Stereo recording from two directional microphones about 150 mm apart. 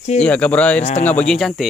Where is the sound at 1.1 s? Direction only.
5° left (ahead or behind).